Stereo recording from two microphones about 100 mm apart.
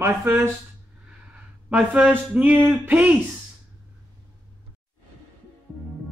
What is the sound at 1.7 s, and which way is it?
Speech, 15° right (ahead or behind).